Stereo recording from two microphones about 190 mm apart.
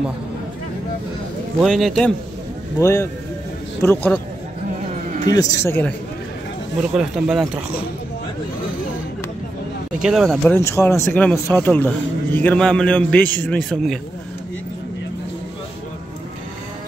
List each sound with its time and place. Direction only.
1.6 s speech: centre (ahead or behind)
2.8 s a man's voice: 15° left (ahead or behind)
5.2 s a man's voice: 20° left (ahead or behind)
6.9 s speech: centre (ahead or behind)
10.0 s speech: centre (ahead or behind)
10.6 s a man's voice: 15° left (ahead or behind)